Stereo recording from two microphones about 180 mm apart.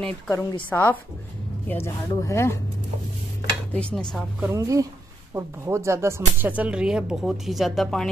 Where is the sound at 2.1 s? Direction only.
15° left (ahead or behind).